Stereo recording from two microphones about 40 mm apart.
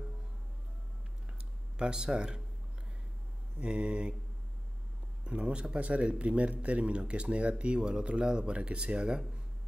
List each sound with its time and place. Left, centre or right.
1.8 s speech: centre
3.5 s speech: right
5.2 s speech: right